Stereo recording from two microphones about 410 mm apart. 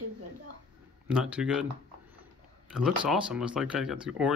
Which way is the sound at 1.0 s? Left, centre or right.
Centre.